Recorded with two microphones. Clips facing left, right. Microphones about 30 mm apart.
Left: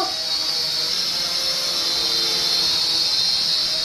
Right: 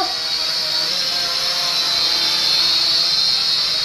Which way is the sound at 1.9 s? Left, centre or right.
Right.